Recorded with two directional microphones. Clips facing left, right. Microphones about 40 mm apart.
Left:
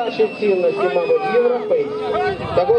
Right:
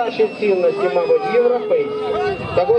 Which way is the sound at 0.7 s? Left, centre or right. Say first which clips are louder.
Right 1 dB; left.